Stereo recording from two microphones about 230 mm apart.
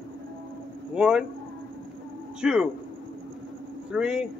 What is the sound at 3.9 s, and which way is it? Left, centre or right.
Vehicle, centre.